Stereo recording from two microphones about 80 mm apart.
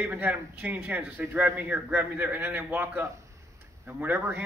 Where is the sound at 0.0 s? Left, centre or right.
Right.